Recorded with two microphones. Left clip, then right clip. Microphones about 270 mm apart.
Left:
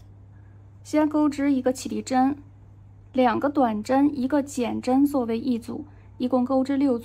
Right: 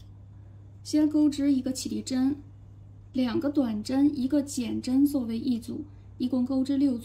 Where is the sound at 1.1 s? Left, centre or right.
Centre.